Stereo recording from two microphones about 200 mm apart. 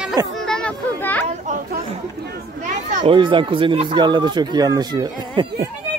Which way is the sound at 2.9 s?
40° right (ahead or behind).